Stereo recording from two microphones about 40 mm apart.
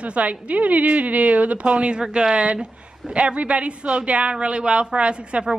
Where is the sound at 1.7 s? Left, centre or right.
Right.